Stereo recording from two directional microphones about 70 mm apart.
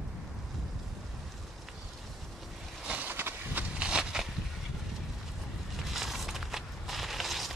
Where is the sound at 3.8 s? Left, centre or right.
Centre.